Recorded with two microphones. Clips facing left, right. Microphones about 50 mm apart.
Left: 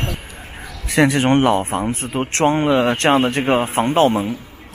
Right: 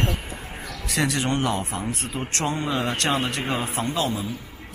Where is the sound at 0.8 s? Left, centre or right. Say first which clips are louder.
Left 9 dB; left.